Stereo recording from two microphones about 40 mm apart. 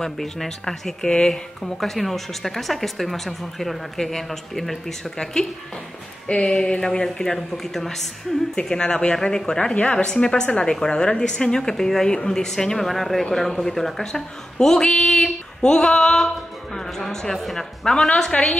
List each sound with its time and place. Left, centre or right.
0.0 s speech: centre
1.6 s speech: centre
8.5 s speech: left
9.8 s speech: left; by 14.9 s centre
14.9 s female singing: centre
16.7 s speech: centre